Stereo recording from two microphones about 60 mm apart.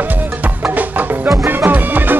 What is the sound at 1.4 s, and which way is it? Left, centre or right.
Music, right.